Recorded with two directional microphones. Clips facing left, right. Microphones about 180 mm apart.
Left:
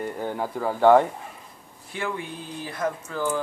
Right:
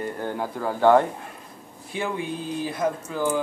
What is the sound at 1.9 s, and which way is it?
Speech, 20° right (ahead or behind).